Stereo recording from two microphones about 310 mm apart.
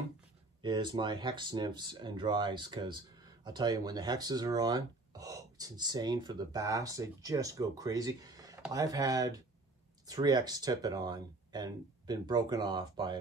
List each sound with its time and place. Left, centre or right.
0.6 s speech: centre